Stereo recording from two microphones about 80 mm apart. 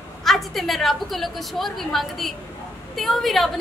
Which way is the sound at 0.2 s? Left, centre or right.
Centre.